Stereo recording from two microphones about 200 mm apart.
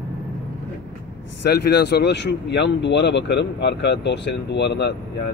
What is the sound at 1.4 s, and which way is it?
Speech, 55° left (ahead or behind).